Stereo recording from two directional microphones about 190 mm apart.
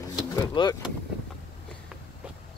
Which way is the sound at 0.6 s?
25° left (ahead or behind).